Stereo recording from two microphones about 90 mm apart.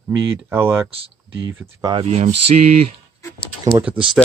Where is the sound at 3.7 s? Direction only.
45° right (ahead or behind).